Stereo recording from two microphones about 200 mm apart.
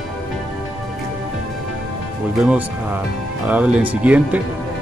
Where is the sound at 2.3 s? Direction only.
5° right (ahead or behind).